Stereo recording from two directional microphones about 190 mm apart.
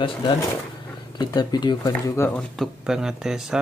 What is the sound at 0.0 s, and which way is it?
Speech, 25° left (ahead or behind).